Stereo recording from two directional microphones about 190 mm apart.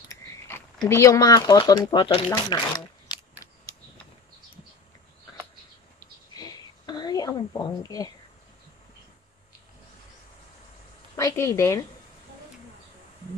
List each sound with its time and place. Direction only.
0.8 s speech: 15° left (ahead or behind)
5.9 s a sound: 20° left (ahead or behind)
11.1 s a woman's voice: 15° left (ahead or behind)